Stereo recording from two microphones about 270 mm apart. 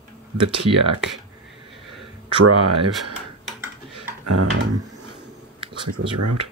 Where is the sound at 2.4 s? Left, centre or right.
Right.